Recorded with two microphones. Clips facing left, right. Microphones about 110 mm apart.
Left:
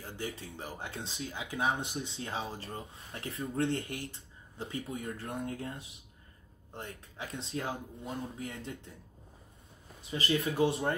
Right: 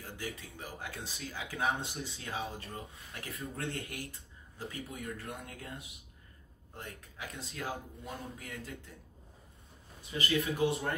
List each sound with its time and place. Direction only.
0.4 s speech: 30° left (ahead or behind)
10.1 s speech: 30° left (ahead or behind)